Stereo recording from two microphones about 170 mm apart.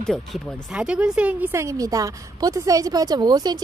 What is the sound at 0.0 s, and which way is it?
Speech, 5° left (ahead or behind).